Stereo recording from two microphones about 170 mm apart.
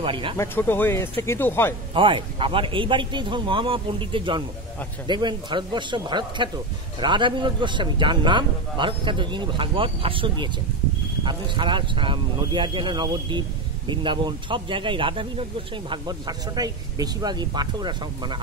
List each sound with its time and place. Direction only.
0.0 s speech: 30° right (ahead or behind)
0.4 s speech: 10° left (ahead or behind)
2.0 s a man's voice: 30° right (ahead or behind)